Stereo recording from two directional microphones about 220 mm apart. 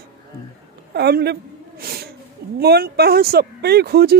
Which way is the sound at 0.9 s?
45° right (ahead or behind).